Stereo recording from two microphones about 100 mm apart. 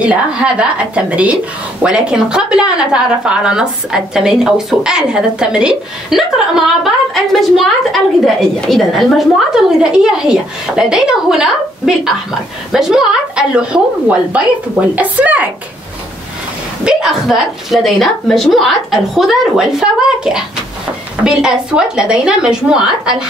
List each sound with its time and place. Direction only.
0.0 s a woman's voice: 10° right (ahead or behind)
16.8 s a woman's voice: 5° right (ahead or behind)